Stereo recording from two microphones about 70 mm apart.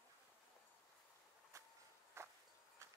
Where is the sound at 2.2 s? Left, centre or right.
Right.